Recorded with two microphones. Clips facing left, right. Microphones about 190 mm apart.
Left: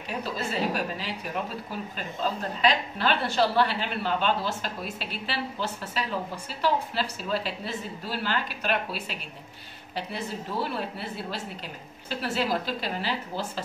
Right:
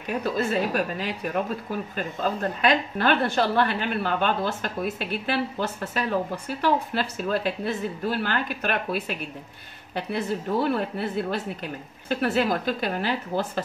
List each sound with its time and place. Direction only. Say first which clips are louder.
0.2 s a woman's voice: right 4 dB; 55° right (ahead or behind)